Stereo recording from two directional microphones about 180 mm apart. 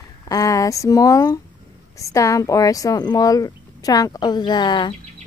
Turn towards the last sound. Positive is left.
turn(degrees=25)  # may be behind; listen again after turning